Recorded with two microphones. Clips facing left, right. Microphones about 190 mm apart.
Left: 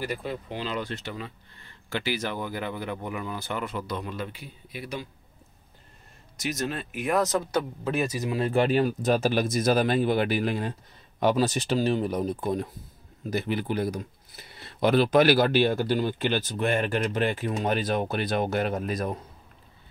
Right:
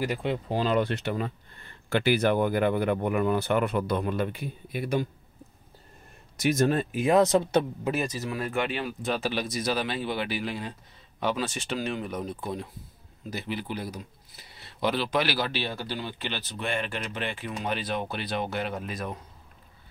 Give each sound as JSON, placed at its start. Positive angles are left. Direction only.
{"t": 0.0, "sound": "speech", "side_deg": -20}
{"t": 0.5, "sound": "speech", "side_deg": -45}
{"t": 6.4, "sound": "speech", "side_deg": -50}
{"t": 6.9, "sound": "speech", "side_deg": -30}
{"t": 8.1, "sound": "speech", "side_deg": 15}
{"t": 8.4, "sound": "speech", "side_deg": 35}